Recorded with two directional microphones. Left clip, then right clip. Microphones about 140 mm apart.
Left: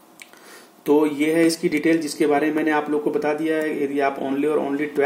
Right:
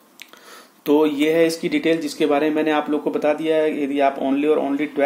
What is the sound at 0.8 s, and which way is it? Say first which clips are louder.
Speech: right 1 dB; 25° right (ahead or behind).